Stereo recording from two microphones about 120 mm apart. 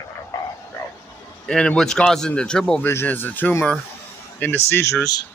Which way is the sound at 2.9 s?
20° left (ahead or behind).